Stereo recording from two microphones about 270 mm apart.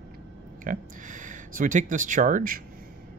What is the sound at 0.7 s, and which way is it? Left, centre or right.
Speech, right.